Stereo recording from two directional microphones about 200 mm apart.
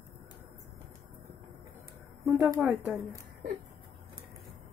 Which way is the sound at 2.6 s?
5° right (ahead or behind).